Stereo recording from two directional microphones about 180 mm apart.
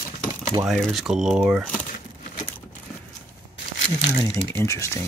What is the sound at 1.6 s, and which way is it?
Speech, 10° left (ahead or behind).